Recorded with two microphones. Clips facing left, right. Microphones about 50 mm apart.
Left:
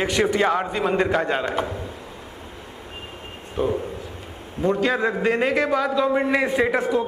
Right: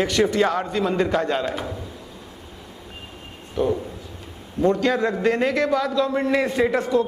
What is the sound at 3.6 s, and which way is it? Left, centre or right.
A man's voice, centre.